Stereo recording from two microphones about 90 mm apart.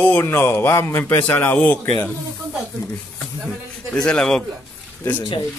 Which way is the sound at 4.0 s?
10° left (ahead or behind).